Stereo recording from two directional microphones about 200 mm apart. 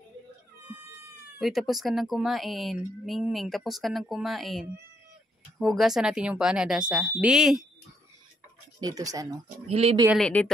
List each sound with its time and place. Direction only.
1.4 s speech: centre (ahead or behind)
8.8 s speech: 20° right (ahead or behind)
9.7 s speech: 30° right (ahead or behind)
10.0 s speech: centre (ahead or behind)